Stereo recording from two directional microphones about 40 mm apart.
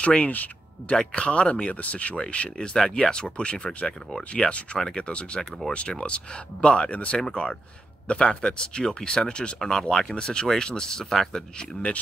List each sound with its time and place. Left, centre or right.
0.0 s speech: left
1.1 s speech: left
2.5 s speech: centre
11.3 s speech: left